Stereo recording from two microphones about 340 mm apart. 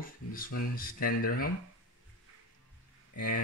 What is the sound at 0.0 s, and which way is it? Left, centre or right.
Speech, left.